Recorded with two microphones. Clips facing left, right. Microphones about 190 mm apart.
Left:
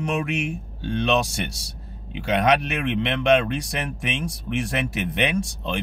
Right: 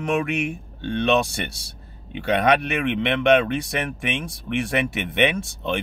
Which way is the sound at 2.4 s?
60° right (ahead or behind).